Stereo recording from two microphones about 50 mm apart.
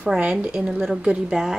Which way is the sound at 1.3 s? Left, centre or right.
Centre.